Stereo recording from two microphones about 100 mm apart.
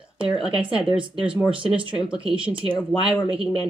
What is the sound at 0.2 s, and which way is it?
Speech, 10° right (ahead or behind).